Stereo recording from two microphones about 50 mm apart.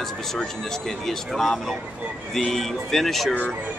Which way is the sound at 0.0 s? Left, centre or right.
Centre.